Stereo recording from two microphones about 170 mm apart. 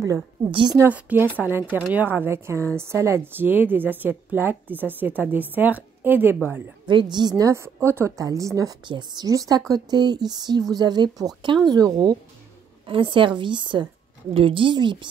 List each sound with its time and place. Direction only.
0.0 s a woman's voice: 20° right (ahead or behind)
0.5 s a woman's voice: 30° right (ahead or behind)
0.7 s a woman's voice: 10° right (ahead or behind)
6.9 s a woman's voice: 25° right (ahead or behind)